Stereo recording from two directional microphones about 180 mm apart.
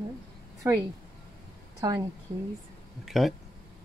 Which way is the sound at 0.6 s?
10° right (ahead or behind).